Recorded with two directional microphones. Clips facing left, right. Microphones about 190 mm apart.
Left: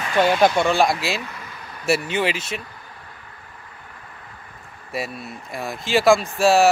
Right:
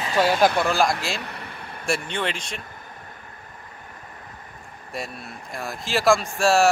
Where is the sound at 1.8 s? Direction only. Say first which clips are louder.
Left 5 dB; 5° left (ahead or behind).